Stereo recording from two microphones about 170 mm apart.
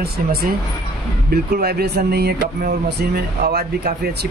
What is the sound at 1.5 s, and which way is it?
Speech, 65° right (ahead or behind).